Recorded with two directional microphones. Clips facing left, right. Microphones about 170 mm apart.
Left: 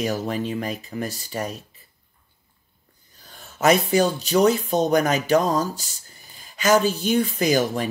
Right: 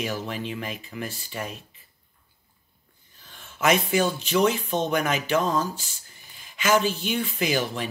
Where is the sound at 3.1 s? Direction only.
40° left (ahead or behind).